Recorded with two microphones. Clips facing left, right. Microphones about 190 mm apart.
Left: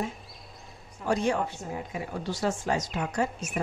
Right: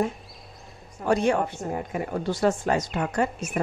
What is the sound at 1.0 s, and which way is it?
A woman's voice, 60° right (ahead or behind).